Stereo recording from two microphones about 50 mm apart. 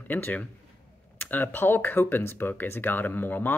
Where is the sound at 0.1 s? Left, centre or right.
Left.